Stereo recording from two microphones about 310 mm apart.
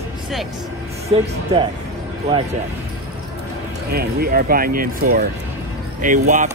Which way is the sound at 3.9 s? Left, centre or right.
Right.